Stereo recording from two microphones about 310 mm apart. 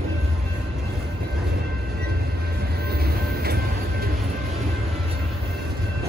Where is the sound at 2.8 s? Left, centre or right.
Right.